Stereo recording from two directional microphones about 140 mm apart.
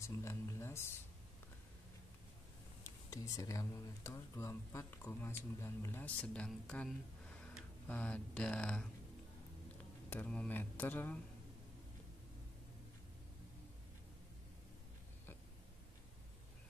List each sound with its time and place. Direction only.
0.0 s speech: 20° left (ahead or behind)
3.1 s speech: 25° left (ahead or behind); by 8.8 s 5° left (ahead or behind)
10.0 s speech: 10° left (ahead or behind)